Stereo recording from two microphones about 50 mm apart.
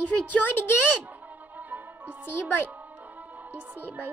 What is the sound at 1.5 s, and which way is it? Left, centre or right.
Music, right.